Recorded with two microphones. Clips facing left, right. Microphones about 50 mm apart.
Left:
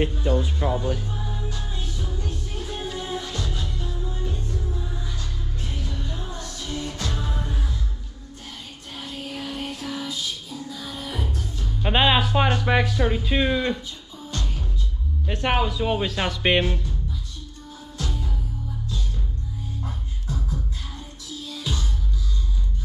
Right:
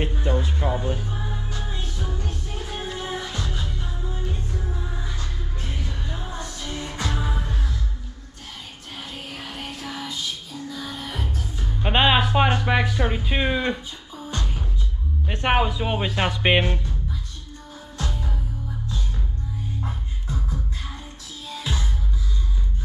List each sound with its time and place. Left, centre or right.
0.1 s music: right
2.5 s music: centre
8.9 s music: centre
11.5 s music: centre
12.8 s speech: centre
14.4 s music: centre
15.2 s speech: right
17.9 s music: right
19.8 s beatboxing: right
21.5 s music: centre